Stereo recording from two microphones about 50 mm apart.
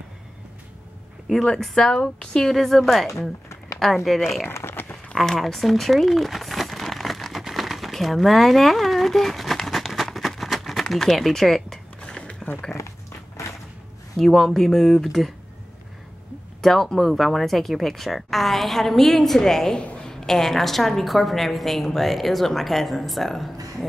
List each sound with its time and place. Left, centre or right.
1.3 s a woman's voice: centre
3.1 s a sound: left
3.9 s a woman's voice: centre
4.6 s crumpling: left
5.1 s crumpling: centre
12.0 s a sound: centre
14.1 s speech: centre
16.6 s a woman's voice: centre